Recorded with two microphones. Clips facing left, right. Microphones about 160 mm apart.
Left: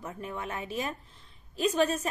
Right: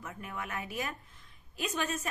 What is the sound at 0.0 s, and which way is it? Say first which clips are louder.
A woman's voice: left 4 dB; 30° left (ahead or behind).